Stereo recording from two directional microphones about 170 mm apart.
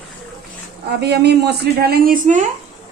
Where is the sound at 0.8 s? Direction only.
80° right.